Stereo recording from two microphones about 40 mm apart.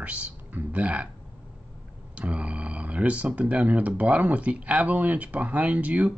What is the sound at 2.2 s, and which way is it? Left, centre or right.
Speech, right.